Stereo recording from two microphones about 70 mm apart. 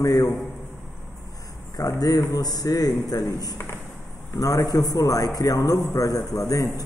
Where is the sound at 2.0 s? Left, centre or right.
Left.